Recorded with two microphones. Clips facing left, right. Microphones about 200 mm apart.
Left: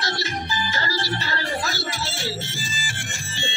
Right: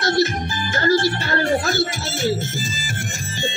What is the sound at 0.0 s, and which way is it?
Music, 50° right (ahead or behind).